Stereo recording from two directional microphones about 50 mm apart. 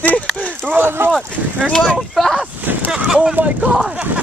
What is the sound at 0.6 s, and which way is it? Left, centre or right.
Speech, right.